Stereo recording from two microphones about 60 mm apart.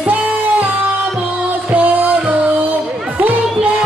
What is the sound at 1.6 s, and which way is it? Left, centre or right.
Music, right.